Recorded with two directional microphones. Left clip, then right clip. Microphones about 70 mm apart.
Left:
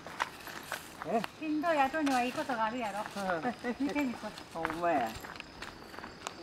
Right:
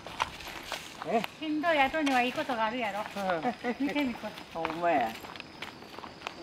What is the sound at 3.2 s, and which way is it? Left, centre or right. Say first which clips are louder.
Speech: right 3 dB; centre.